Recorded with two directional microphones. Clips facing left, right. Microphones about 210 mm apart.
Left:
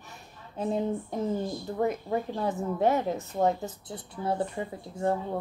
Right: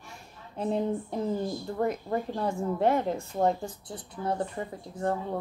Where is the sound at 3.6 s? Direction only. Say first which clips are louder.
Left 1 dB; 20° left (ahead or behind).